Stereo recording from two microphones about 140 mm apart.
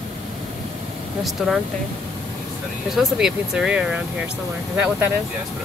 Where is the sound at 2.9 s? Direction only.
5° right (ahead or behind).